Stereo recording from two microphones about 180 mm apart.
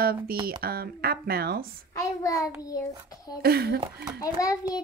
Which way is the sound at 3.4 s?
60° right (ahead or behind).